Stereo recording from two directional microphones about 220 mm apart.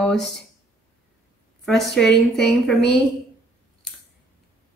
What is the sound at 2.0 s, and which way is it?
Speech, centre (ahead or behind).